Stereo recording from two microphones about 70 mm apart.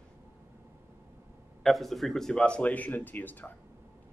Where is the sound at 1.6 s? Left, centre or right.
Centre.